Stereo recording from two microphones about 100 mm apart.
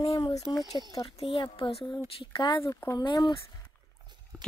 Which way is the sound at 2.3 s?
50° left (ahead or behind).